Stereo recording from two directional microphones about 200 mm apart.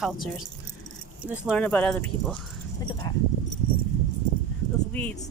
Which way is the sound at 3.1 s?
20° left (ahead or behind).